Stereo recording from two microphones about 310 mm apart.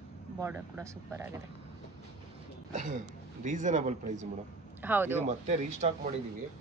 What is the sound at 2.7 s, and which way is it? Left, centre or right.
A man's voice, right.